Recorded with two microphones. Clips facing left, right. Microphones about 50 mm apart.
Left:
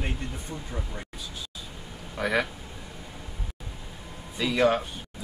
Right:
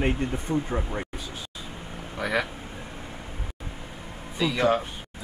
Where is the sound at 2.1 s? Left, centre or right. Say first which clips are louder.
Left 1 dB; centre.